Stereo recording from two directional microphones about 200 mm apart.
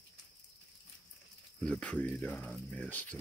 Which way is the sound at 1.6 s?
5° left (ahead or behind).